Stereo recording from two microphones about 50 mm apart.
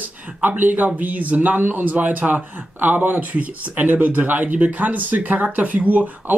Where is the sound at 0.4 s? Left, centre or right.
Right.